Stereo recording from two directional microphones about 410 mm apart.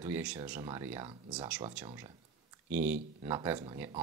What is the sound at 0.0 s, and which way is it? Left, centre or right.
Speech, centre.